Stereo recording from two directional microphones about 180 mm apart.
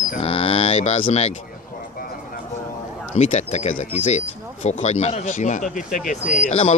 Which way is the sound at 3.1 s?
40° left (ahead or behind).